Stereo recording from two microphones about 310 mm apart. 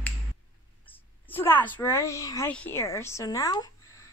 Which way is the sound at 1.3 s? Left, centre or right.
Centre.